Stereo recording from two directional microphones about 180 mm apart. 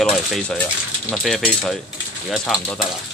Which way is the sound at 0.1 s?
Centre (ahead or behind).